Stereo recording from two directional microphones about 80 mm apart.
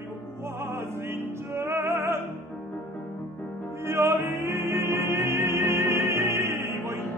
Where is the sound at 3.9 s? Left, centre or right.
Right.